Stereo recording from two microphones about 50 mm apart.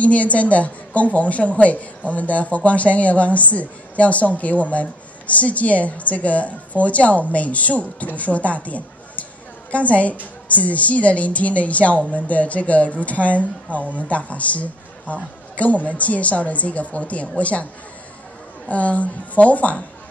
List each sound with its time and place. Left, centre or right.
0.0 s speech: left
18.7 s speech: left